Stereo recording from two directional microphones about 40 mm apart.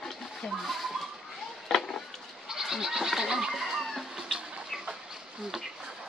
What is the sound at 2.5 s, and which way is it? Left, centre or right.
Goat, centre.